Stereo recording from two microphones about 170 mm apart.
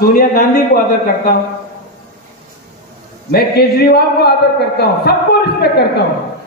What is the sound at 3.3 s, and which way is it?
Speech, 65° left (ahead or behind).